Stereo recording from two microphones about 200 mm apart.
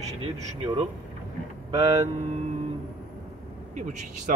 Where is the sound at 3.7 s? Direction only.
40° right (ahead or behind).